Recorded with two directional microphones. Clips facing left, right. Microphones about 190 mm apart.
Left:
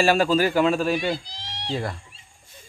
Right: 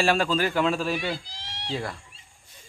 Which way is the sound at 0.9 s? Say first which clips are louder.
Left 5 dB; 15° left (ahead or behind).